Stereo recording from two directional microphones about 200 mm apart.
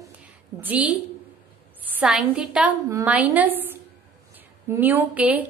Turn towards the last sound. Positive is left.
turn(degrees=-5)  # may be behind; listen again after turning